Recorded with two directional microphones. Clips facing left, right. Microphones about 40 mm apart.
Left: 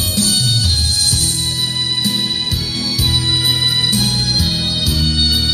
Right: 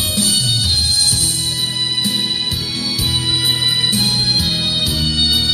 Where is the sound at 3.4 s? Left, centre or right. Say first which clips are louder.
Left 1 dB; right.